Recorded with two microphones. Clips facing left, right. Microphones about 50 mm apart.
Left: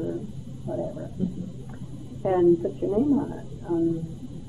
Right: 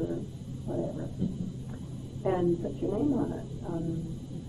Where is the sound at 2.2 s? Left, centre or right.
Centre.